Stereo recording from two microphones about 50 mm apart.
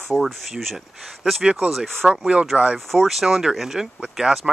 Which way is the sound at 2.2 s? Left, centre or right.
Right.